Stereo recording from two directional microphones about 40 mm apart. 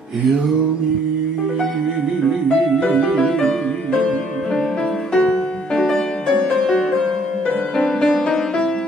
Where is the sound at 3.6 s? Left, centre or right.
Left.